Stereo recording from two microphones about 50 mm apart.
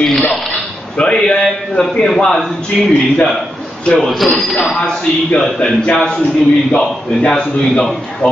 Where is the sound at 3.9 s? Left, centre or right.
Centre.